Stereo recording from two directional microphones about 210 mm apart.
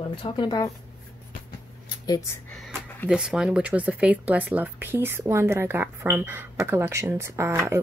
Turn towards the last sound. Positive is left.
turn(degrees=-10)  # may be behind; listen again after turning